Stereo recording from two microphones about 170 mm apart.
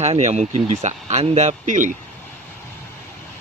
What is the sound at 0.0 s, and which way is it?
Speech, 40° right (ahead or behind).